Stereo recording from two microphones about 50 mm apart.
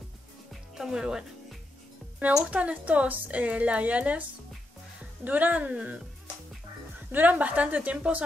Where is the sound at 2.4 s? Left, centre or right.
Right.